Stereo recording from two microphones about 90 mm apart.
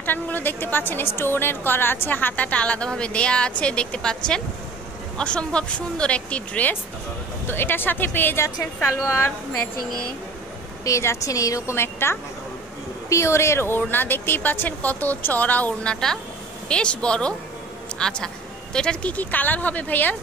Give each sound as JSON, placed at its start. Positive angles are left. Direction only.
{"t": 0.0, "sound": "a woman's voice", "side_deg": 20}
{"t": 10.9, "sound": "a woman's voice", "side_deg": 35}